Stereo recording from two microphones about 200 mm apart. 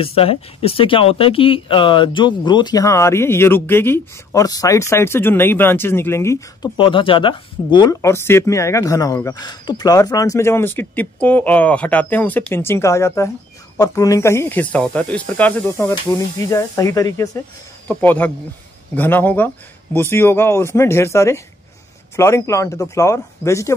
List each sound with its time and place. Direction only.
0.0 s speech: 30° left (ahead or behind); by 6.7 s 15° left (ahead or behind)
6.8 s speech: 25° left (ahead or behind)